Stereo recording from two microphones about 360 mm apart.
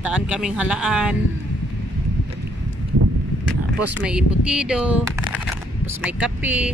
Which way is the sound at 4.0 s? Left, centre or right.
Centre.